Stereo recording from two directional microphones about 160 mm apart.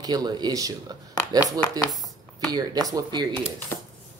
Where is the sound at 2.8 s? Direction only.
25° right (ahead or behind).